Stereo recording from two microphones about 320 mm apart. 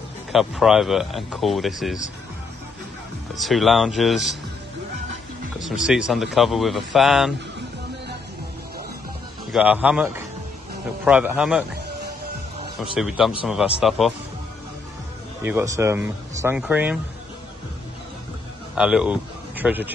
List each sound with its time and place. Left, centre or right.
0.3 s speech: centre
3.3 s speech: centre
5.6 s speech: centre
9.5 s speech: centre
12.9 s speech: centre
15.4 s speech: centre
18.8 s a man's voice: centre